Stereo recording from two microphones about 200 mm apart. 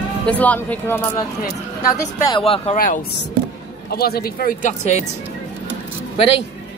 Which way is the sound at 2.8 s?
45° left (ahead or behind).